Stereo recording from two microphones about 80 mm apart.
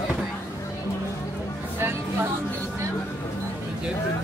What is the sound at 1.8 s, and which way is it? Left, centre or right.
Music, right.